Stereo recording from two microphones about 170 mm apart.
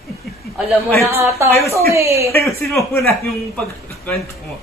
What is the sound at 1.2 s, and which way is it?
A woman's voice, 15° right (ahead or behind).